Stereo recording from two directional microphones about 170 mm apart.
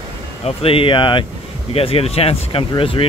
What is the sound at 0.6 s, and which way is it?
Speech, 35° left (ahead or behind).